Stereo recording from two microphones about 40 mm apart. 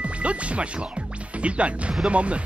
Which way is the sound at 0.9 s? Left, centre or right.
Right.